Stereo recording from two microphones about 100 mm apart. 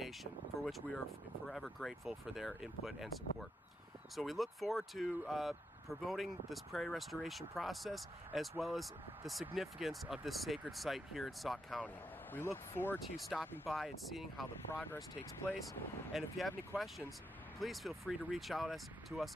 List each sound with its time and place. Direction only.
0.0 s speech: centre (ahead or behind)
11.8 s speech: 20° left (ahead or behind)
13.2 s speech: centre (ahead or behind)
14.7 s speech: 25° left (ahead or behind)
16.1 s speech: centre (ahead or behind)